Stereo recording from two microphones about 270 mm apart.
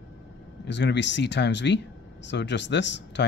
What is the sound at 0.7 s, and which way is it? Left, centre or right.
Speech, left.